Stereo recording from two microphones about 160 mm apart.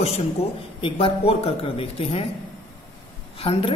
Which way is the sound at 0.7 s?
35° left (ahead or behind).